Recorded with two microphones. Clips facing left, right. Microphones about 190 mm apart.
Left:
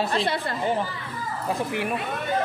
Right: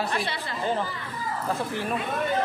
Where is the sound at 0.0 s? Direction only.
25° left (ahead or behind).